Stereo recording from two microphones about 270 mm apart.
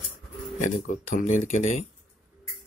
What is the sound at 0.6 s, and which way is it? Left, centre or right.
Speech, left.